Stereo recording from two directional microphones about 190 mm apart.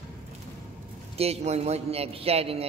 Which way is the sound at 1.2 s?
35° right (ahead or behind).